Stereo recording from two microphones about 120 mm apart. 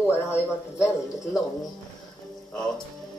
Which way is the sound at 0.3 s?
25° left (ahead or behind).